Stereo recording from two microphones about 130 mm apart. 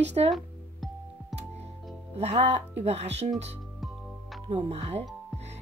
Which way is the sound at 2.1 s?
55° right (ahead or behind).